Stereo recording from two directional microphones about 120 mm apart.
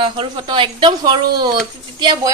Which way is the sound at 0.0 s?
40° right (ahead or behind).